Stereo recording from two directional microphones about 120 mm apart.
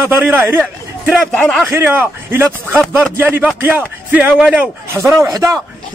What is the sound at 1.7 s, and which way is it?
A man's voice, 20° right (ahead or behind).